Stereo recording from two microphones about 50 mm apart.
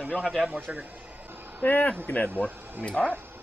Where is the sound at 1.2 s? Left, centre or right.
Right.